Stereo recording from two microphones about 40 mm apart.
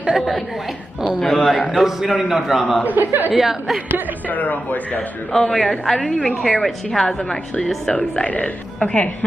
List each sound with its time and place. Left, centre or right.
1.2 s a woman's voice: centre
1.7 s a man's voice: centre
2.8 s speech: right
3.3 s a woman's voice: centre
4.3 s a man's voice: left
5.3 s a man's voice: centre
5.6 s a man's voice: centre
7.9 s a woman's voice: left